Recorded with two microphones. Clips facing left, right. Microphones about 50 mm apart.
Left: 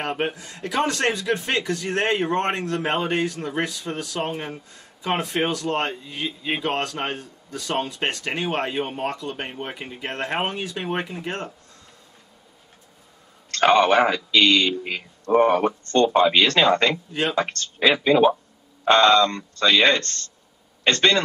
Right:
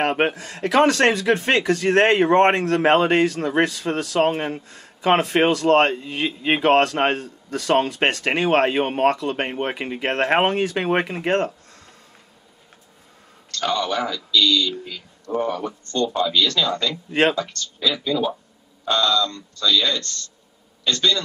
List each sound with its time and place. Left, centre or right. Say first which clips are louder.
0.0 s speech: right 6 dB; right
13.5 s speech: left 7 dB; left
17.1 s speech: right 6 dB; right
17.4 s speech: left 4 dB; left